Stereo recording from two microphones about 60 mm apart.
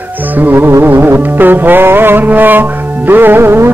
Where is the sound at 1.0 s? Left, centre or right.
Right.